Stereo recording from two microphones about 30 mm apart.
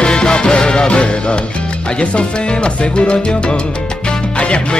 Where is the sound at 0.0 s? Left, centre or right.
Left.